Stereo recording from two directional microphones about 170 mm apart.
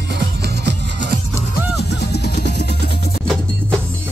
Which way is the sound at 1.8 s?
75° left (ahead or behind).